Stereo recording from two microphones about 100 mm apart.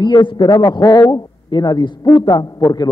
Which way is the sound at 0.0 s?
50° left (ahead or behind).